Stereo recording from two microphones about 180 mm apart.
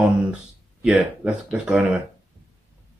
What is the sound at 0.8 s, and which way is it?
Speech, 5° right (ahead or behind).